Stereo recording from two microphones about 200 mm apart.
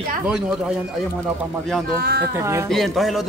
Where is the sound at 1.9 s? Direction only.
50° right (ahead or behind).